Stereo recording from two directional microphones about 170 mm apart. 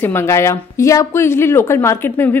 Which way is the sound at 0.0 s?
15° left (ahead or behind).